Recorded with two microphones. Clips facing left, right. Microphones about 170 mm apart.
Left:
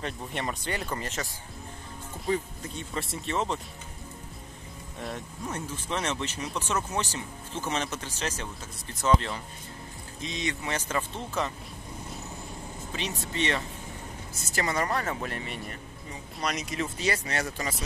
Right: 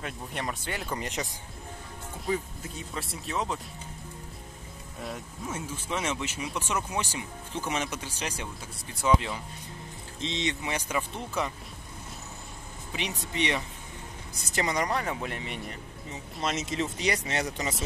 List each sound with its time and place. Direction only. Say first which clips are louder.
0.0 s speech: left 2 dB; centre (ahead or behind)
0.9 s speech: right 1 dB; 15° right (ahead or behind)
2.2 s speech: left 2 dB; centre (ahead or behind)
5.0 s speech: left 1 dB; 5° right (ahead or behind)
10.2 s speech: right 1 dB; 25° right (ahead or behind)
13.2 s speech: even; 15° right (ahead or behind)